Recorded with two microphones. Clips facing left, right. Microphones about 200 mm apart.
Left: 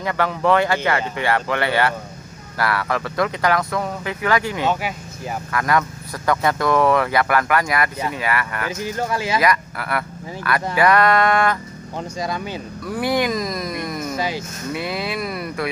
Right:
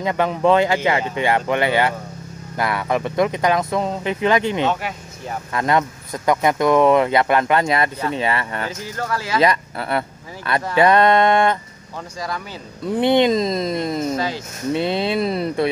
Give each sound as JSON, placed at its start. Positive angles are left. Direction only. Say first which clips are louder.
{"t": 0.0, "sound": "speech", "louder": "right 3 dB", "side_deg": -20}
{"t": 8.8, "sound": "speech", "louder": "left 3 dB", "side_deg": 15}
{"t": 9.4, "sound": "speech", "louder": "right 2 dB", "side_deg": -25}
{"t": 12.2, "sound": "speech", "louder": "left 2 dB", "side_deg": 20}
{"t": 12.8, "sound": "speech", "louder": "right 5 dB", "side_deg": -25}
{"t": 14.1, "sound": "speech", "louder": "right 1 dB", "side_deg": 15}
{"t": 14.7, "sound": "speech", "louder": "right 6 dB", "side_deg": -25}